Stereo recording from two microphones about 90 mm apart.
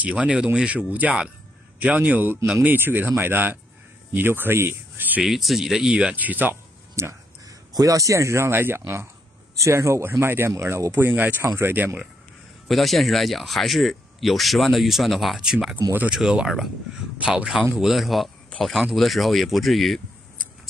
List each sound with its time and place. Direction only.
0.0 s speech: 15° right (ahead or behind)
5.2 s speech: centre (ahead or behind); by 12.1 s 20° right (ahead or behind)
12.6 s speech: centre (ahead or behind)